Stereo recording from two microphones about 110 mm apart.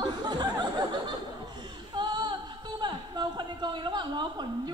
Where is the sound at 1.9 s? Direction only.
45° right (ahead or behind).